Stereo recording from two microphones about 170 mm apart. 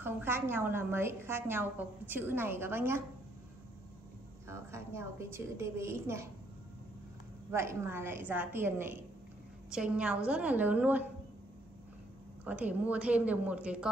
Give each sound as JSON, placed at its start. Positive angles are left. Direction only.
{"t": 0.0, "sound": "a woman's voice", "side_deg": -10}
{"t": 4.5, "sound": "a woman's voice", "side_deg": -15}
{"t": 7.5, "sound": "a woman's voice", "side_deg": -15}
{"t": 12.4, "sound": "a woman's voice", "side_deg": -10}